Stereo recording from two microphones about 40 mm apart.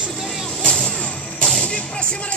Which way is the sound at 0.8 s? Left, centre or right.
Left.